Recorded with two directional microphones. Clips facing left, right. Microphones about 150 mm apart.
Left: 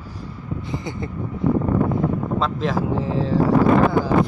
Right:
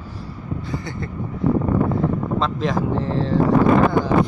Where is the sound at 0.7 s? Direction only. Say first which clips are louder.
Left 3 dB; 20° left (ahead or behind).